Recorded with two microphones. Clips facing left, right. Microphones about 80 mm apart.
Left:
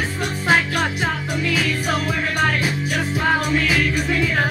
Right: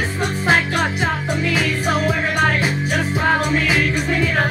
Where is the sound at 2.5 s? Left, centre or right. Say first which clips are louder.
Right 2 dB; right.